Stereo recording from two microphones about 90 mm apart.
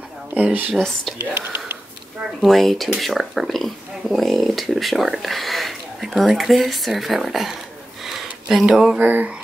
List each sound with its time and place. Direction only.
0.3 s speech: 20° right (ahead or behind)
0.7 s speech: 5° left (ahead or behind)
2.4 s speech: centre (ahead or behind)
8.0 s a sound: 5° right (ahead or behind)
9.0 s speech: 20° right (ahead or behind)